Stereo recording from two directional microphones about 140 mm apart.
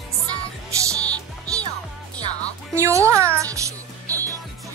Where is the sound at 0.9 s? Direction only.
10° left (ahead or behind).